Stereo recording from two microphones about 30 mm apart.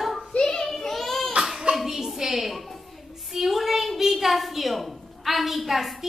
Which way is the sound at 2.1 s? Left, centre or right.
Centre.